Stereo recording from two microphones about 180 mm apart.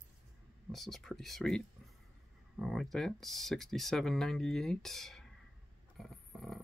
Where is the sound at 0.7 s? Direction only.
Centre (ahead or behind).